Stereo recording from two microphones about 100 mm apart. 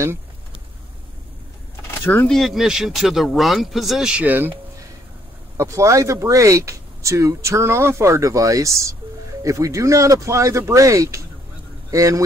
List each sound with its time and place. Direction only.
2.2 s speech: centre (ahead or behind); by 4.6 s 20° right (ahead or behind)
5.6 s a man's voice: 30° right (ahead or behind)